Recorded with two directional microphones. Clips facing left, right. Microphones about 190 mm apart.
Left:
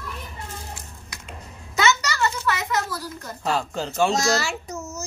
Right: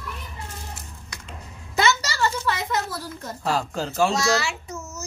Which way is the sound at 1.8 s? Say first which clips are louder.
Even; 30° right (ahead or behind).